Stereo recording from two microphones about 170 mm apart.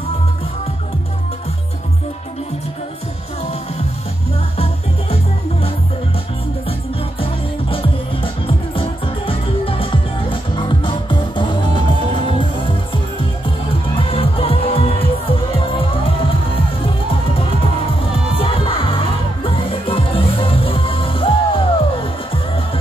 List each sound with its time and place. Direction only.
7.7 s music: 30° left (ahead or behind)
18.1 s crowd: 30° left (ahead or behind)